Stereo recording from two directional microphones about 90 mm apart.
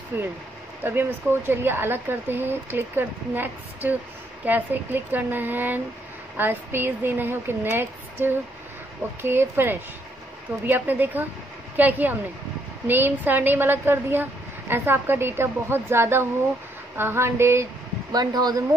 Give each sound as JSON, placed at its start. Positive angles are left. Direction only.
{"t": 0.1, "sound": "a woman's voice", "side_deg": -20}
{"t": 18.1, "sound": "speech", "side_deg": -50}